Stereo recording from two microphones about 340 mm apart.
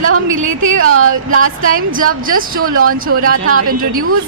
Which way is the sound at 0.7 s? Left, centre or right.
Right.